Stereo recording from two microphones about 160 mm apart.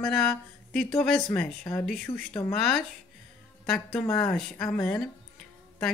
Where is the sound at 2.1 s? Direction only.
30° left (ahead or behind).